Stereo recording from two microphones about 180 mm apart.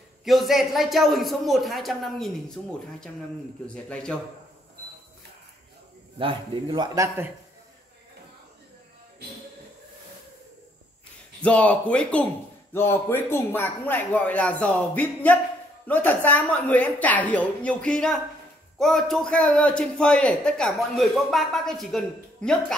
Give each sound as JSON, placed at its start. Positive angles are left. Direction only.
{"t": 0.2, "sound": "a man's voice", "side_deg": 0}
{"t": 6.1, "sound": "a man's voice", "side_deg": -25}
{"t": 11.4, "sound": "a man's voice", "side_deg": 5}